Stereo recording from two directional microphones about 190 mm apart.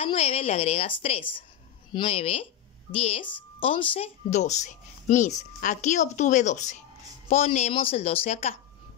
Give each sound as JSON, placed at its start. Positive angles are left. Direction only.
{"t": 0.0, "sound": "speech", "side_deg": 30}